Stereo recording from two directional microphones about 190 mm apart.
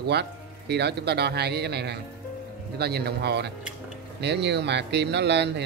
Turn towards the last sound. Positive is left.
turn(degrees=-65)  # may be behind; listen again after turning